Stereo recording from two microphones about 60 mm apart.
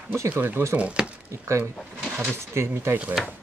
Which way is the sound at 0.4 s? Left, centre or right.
Right.